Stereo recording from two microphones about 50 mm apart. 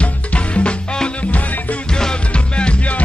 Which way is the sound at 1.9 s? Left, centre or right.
Centre.